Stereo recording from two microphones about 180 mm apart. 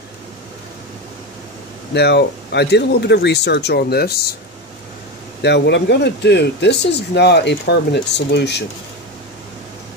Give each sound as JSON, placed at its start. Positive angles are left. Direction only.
{"t": 2.0, "sound": "speech", "side_deg": 70}
{"t": 5.4, "sound": "speech", "side_deg": 70}